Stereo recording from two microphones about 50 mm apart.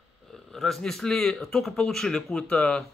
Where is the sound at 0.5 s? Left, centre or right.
Centre.